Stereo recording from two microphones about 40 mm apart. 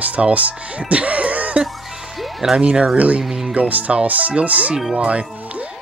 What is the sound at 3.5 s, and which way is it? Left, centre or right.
Speech, right.